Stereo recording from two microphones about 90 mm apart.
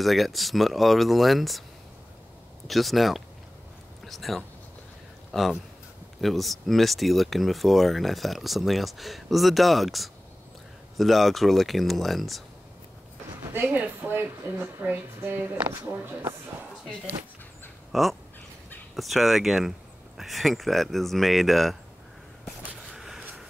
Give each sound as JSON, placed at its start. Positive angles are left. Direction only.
{"t": 0.0, "sound": "speech", "side_deg": 0}
{"t": 2.7, "sound": "speech", "side_deg": 0}
{"t": 13.6, "sound": "a woman's voice", "side_deg": -25}
{"t": 17.9, "sound": "speech", "side_deg": 0}
{"t": 22.4, "sound": "a sound", "side_deg": 0}